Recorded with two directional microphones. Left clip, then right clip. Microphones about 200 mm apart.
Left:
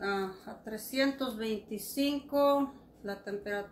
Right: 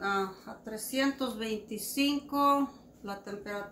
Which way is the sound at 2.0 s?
20° right (ahead or behind).